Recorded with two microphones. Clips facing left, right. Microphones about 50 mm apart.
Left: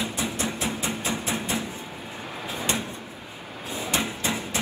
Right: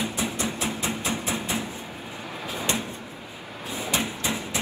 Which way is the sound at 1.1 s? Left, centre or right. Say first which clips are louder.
Even; left.